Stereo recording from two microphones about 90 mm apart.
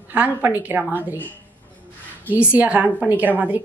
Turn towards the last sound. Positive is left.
turn(degrees=-20)  # may be behind; listen again after turning